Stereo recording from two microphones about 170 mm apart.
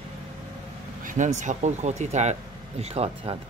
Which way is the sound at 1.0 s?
45° right (ahead or behind).